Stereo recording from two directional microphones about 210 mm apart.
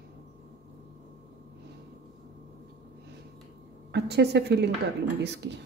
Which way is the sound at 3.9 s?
50° right (ahead or behind).